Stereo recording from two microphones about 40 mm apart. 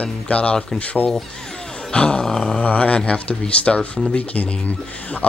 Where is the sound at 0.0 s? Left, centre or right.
Left.